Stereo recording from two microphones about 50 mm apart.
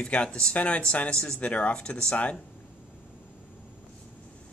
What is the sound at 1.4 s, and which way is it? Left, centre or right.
Speech, left.